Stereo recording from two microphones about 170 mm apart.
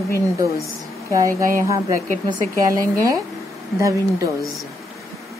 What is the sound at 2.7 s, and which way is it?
Speech, 20° right (ahead or behind).